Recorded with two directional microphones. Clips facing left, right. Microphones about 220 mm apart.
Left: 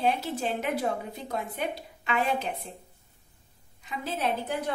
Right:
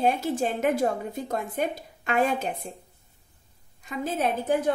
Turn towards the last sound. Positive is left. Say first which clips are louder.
# right 5 dB
turn(degrees=-45)  # may be behind; listen again after turning